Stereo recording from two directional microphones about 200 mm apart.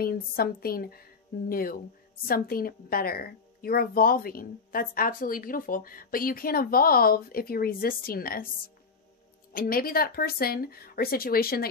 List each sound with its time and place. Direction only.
0.0 s a woman's voice: 50° left (ahead or behind)
9.5 s a woman's voice: 45° left (ahead or behind)